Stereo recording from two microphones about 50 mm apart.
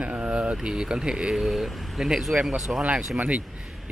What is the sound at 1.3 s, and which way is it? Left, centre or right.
Speech, centre.